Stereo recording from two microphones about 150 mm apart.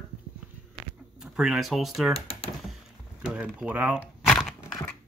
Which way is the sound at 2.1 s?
40° left (ahead or behind).